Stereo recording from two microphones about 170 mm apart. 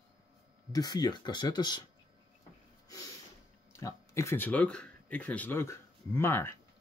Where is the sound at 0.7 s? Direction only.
25° left (ahead or behind).